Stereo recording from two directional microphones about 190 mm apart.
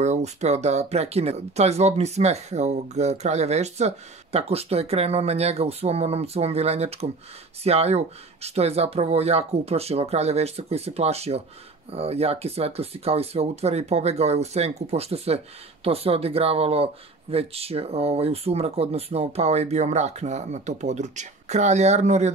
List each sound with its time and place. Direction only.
0.0 s speech: 35° right (ahead or behind)